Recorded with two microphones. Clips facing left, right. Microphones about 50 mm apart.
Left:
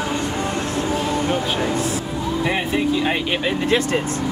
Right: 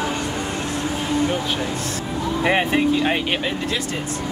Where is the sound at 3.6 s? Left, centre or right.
Left.